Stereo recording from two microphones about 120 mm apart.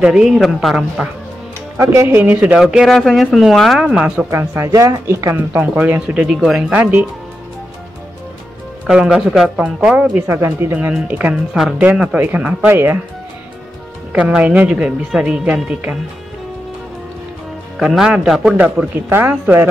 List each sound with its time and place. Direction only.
0.0 s speech: 5° right (ahead or behind)
1.8 s a man's voice: 25° right (ahead or behind)
2.6 s speech: 5° right (ahead or behind)
4.3 s speech: 20° right (ahead or behind)
8.8 s speech: 5° right (ahead or behind)
14.1 s speech: 10° right (ahead or behind)
17.7 s speech: 5° right (ahead or behind)
18.6 s speech: 15° right (ahead or behind)